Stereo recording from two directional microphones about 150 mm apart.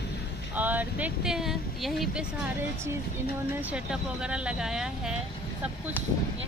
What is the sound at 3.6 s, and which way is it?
Speech, 5° right (ahead or behind).